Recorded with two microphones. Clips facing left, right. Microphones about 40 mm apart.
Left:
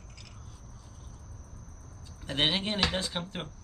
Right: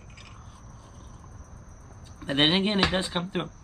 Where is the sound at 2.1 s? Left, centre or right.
Right.